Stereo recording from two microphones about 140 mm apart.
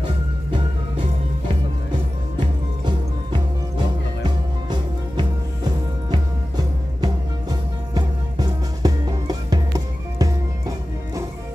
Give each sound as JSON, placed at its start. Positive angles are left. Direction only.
{"t": 2.8, "sound": "music", "side_deg": -35}